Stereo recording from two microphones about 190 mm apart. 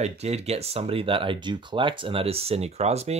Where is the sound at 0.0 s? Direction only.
35° right (ahead or behind).